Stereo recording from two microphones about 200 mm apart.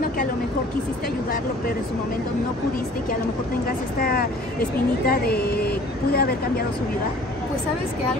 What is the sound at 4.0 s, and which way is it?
A man's voice, 45° left (ahead or behind).